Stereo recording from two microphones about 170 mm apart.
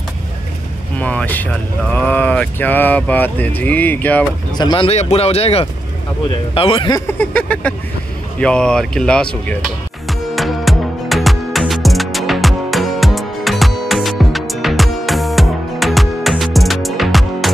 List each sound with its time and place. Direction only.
0.9 s speech: 10° left (ahead or behind)
4.6 s speech: 30° left (ahead or behind)
7.1 s speech: 10° left (ahead or behind)
10.0 s music: centre (ahead or behind)